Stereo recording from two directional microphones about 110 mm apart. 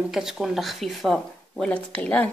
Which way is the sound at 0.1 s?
5° right (ahead or behind).